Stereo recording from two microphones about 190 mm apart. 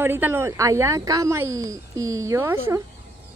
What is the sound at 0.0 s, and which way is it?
Speech, 10° right (ahead or behind).